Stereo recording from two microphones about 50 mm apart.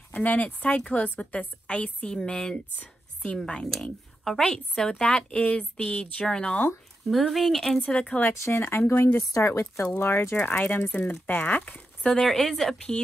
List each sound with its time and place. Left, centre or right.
0.1 s a woman's voice: left; by 2.6 s centre
2.8 s a sound: left
3.4 s a woman's voice: centre
6.2 s speech: centre
7.1 s speech: centre
7.9 s a woman's voice: left
8.3 s speech: left
9.3 s speech: left
9.9 s a woman's voice: left
12.1 s speech: centre